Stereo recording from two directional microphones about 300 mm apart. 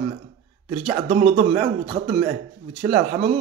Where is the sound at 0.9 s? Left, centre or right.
Right.